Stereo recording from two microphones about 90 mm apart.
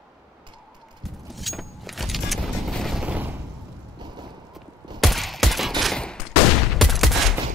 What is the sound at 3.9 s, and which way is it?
Clip-clop, 55° right (ahead or behind).